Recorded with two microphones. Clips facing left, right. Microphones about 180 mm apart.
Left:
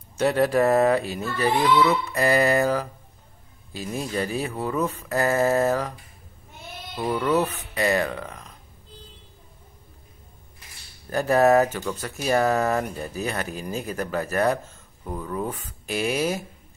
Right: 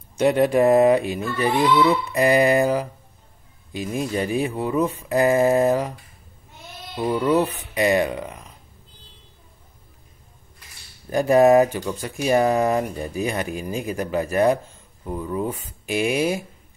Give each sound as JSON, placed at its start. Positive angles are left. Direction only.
{"t": 0.2, "sound": "speech", "side_deg": -15}
{"t": 1.5, "sound": "speech", "side_deg": -35}
{"t": 2.1, "sound": "speech", "side_deg": -15}
{"t": 7.0, "sound": "speech", "side_deg": -15}
{"t": 11.1, "sound": "speech", "side_deg": -15}